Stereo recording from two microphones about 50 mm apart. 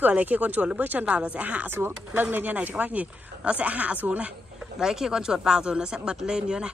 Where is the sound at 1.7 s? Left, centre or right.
Right.